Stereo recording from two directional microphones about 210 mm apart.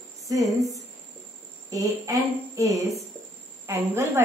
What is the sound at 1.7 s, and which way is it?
A woman's voice, 15° right (ahead or behind).